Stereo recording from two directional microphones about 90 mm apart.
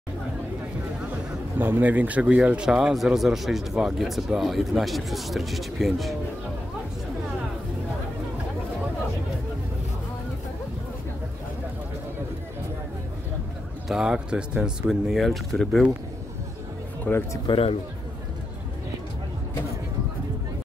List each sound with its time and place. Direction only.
1.6 s a man's voice: 20° right (ahead or behind); by 6.1 s centre (ahead or behind)
13.8 s a man's voice: 5° right (ahead or behind)
17.0 s speech: 25° left (ahead or behind)
17.5 s speech: 90° left